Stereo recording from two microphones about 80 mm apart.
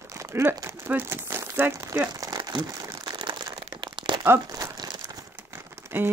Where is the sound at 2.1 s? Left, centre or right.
Right.